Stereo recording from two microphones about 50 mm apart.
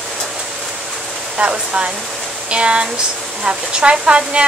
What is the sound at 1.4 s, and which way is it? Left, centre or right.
Speech, right.